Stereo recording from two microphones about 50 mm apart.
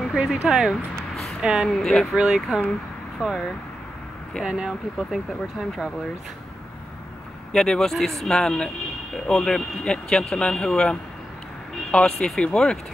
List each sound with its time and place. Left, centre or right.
0.2 s speech: centre
0.9 s a sound: centre
1.4 s speech: centre
1.7 s a man's voice: centre
2.1 s speech: centre
4.5 s speech: centre
7.5 s a man's voice: centre